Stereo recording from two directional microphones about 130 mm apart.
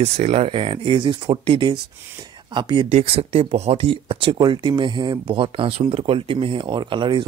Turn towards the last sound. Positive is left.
turn(degrees=-40)  # may be behind; listen again after turning